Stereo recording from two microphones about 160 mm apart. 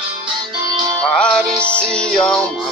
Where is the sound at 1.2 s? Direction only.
5° left (ahead or behind).